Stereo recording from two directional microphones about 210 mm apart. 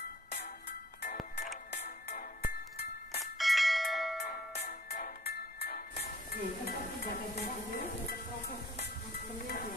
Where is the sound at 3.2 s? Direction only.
Centre (ahead or behind).